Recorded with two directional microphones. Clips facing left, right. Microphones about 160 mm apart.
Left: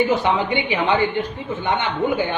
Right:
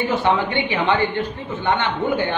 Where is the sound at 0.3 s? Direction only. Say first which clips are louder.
Even; 15° left (ahead or behind).